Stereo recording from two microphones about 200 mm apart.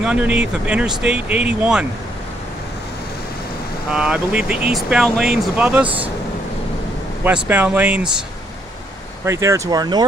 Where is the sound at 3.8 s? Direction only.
5° right (ahead or behind).